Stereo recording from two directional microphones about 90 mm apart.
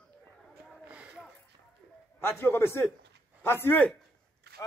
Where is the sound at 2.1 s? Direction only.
25° left (ahead or behind).